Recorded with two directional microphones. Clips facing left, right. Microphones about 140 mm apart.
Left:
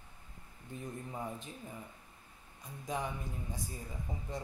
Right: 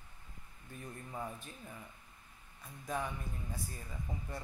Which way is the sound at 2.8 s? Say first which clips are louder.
Left 1 dB; 20° left (ahead or behind).